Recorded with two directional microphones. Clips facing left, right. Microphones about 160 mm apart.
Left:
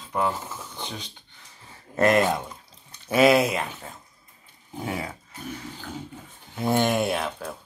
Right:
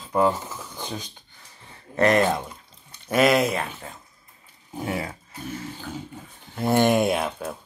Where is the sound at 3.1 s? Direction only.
30° left (ahead or behind).